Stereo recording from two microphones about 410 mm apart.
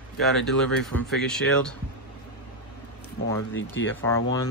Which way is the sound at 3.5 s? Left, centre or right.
Left.